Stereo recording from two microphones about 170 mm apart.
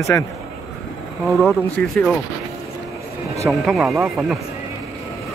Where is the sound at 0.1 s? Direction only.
15° left (ahead or behind).